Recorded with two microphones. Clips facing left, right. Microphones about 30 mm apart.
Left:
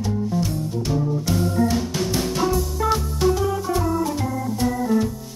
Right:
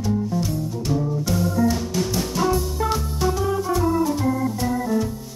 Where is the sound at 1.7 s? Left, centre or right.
Centre.